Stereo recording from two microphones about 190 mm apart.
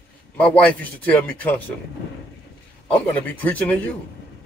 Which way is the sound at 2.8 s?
10° left (ahead or behind).